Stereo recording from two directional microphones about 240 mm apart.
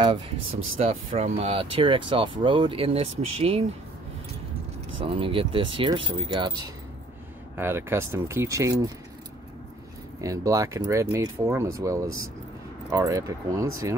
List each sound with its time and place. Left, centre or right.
0.0 s speech: right
5.0 s speech: right
10.2 s speech: centre